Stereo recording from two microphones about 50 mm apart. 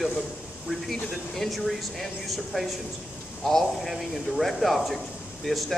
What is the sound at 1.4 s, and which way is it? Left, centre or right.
Speech, centre.